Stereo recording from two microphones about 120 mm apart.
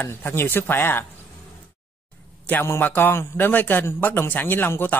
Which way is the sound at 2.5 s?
20° left (ahead or behind).